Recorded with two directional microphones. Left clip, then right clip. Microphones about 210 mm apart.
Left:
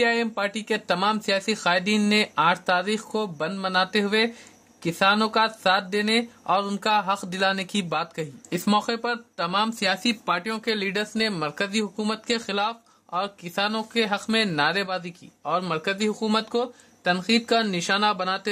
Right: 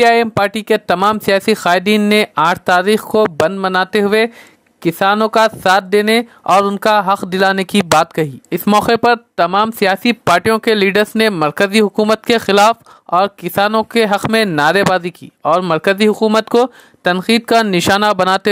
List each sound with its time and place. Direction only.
0.0 s speech: 45° right (ahead or behind)